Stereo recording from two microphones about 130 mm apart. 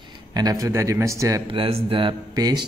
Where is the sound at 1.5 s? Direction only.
40° right (ahead or behind).